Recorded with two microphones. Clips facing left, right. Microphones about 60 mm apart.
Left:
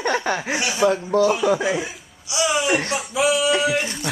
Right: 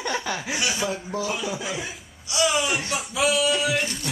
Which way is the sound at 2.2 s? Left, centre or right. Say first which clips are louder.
Left 1 dB; centre.